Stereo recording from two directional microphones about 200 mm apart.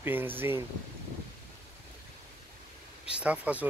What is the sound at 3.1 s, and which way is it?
Speech, 5° right (ahead or behind).